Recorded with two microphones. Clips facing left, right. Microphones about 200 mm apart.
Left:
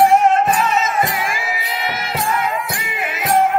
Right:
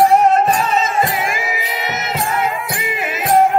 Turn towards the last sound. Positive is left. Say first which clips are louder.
# right 2 dB
turn(degrees=-30)  # may be behind; listen again after turning